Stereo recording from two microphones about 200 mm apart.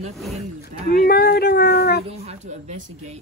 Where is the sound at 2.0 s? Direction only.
30° right (ahead or behind).